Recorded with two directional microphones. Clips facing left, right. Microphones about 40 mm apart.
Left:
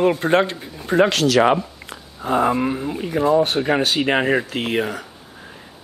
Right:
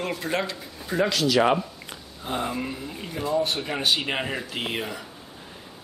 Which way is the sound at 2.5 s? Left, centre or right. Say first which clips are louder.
Left 10 dB; left.